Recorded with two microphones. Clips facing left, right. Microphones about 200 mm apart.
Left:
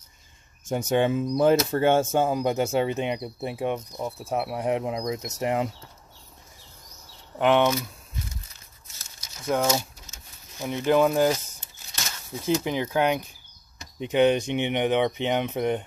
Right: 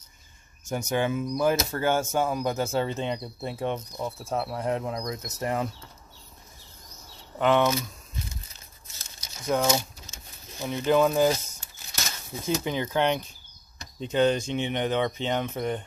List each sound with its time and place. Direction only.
0.7 s speech: 30° left (ahead or behind)
7.3 s speech: 15° left (ahead or behind)
9.5 s speech: 5° left (ahead or behind)
12.4 s speech: 15° left (ahead or behind)